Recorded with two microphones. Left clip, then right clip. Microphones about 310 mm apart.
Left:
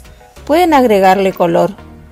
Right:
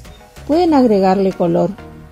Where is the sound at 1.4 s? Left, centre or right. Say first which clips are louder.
Left 4 dB; left.